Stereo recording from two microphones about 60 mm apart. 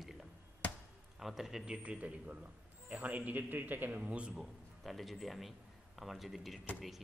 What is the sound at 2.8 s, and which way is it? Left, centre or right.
A man's voice, right.